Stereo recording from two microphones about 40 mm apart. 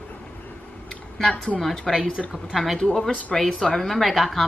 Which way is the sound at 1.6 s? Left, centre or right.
Centre.